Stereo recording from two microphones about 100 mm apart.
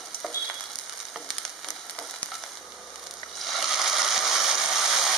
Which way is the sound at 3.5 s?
Centre (ahead or behind).